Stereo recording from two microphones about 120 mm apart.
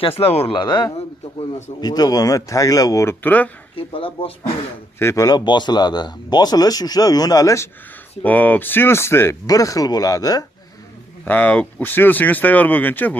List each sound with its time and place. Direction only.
0.0 s speech: 55° left (ahead or behind)
0.6 s speech: 40° left (ahead or behind); by 3.4 s 15° left (ahead or behind)
3.7 s speech: 50° left (ahead or behind)
4.9 s speech: 25° left (ahead or behind)
8.2 s speech: 15° left (ahead or behind); by 10.4 s 30° left (ahead or behind)
11.2 s speech: 15° left (ahead or behind)